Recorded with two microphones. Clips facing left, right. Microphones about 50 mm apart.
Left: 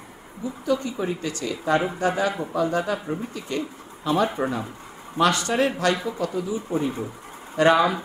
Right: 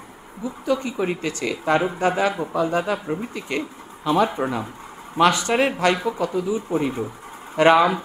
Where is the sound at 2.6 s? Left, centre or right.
Right.